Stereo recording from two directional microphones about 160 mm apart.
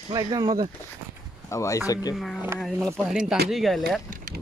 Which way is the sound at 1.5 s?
20° left (ahead or behind).